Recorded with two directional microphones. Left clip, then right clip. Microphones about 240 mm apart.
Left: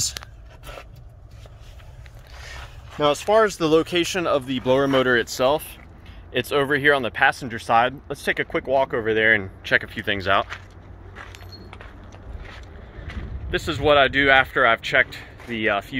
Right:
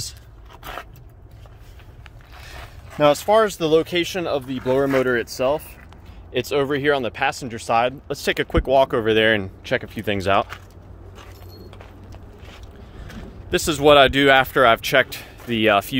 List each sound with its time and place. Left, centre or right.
3.3 s speech: centre
6.3 s speech: centre
8.2 s speech: centre
13.5 s speech: right